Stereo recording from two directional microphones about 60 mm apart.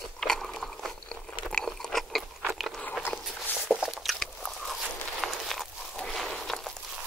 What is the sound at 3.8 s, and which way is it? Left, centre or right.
Biting, centre.